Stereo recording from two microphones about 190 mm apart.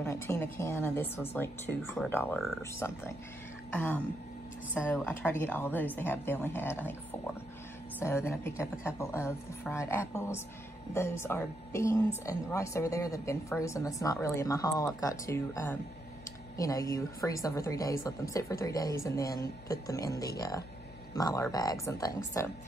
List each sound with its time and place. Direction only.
0.0 s a woman's voice: 15° left (ahead or behind)
8.0 s a woman's voice: 15° left (ahead or behind)